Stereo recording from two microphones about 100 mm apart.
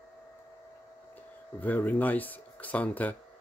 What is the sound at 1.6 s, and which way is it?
Speech, 15° left (ahead or behind).